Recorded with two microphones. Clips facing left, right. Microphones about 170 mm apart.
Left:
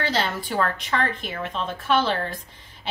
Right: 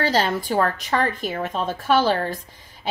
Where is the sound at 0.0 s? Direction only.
40° right (ahead or behind).